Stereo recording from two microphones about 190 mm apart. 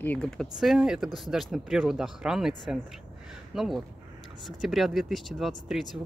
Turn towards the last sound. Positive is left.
turn(degrees=0)  # may be behind; listen again after turning